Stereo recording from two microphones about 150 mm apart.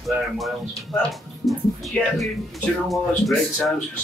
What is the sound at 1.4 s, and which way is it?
Music, centre (ahead or behind).